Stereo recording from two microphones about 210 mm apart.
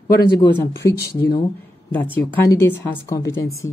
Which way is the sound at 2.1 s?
10° left (ahead or behind).